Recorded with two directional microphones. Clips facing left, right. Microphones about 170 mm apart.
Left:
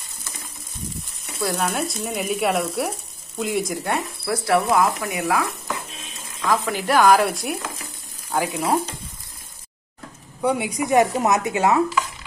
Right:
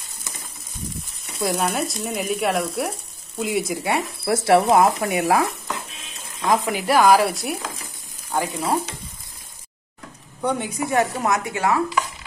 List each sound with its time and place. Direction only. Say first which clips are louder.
1.6 s frying: right 1 dB; centre (ahead or behind)
4.3 s speech: right 4 dB; 25° right (ahead or behind)
6.7 s frying: even; 5° right (ahead or behind)
8.3 s stir: left 1 dB; 5° left (ahead or behind)
10.4 s speech: left 2 dB; 10° left (ahead or behind)